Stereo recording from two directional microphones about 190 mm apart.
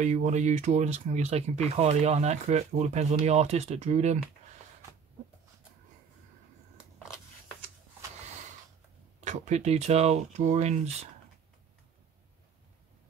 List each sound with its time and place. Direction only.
0.0 s speech: 40° right (ahead or behind)
9.2 s speech: 40° right (ahead or behind)